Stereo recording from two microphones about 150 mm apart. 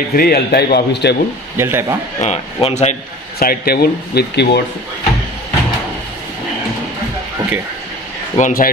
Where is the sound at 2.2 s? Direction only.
50° left (ahead or behind).